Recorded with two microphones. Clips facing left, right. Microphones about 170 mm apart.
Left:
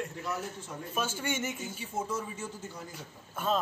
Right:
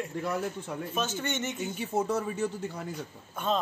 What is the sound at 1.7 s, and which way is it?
Speech, 65° right (ahead or behind).